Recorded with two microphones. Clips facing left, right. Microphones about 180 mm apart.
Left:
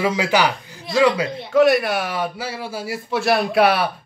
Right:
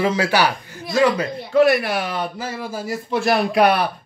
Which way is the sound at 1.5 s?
Centre (ahead or behind).